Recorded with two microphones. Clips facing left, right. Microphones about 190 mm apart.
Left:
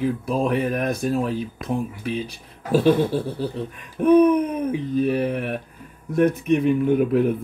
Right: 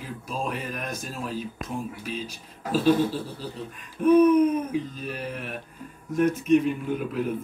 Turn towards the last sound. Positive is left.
turn(degrees=60)  # may be behind; listen again after turning